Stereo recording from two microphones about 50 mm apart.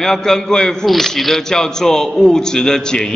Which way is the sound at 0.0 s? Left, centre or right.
Centre.